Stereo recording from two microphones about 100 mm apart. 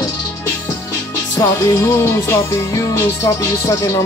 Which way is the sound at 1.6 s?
30° left (ahead or behind).